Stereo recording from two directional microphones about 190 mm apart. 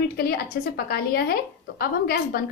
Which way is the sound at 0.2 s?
55° left (ahead or behind).